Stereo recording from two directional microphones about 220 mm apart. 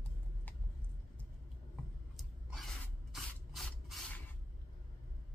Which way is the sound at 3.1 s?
Centre (ahead or behind).